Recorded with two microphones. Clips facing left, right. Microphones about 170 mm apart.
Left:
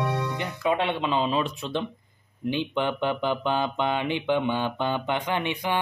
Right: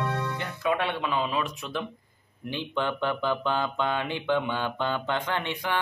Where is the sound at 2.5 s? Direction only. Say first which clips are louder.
Left 3 dB; 20° left (ahead or behind).